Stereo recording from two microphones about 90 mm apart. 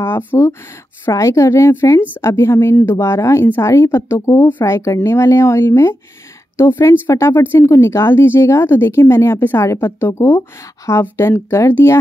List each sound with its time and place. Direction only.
0.3 s speech: 35° left (ahead or behind)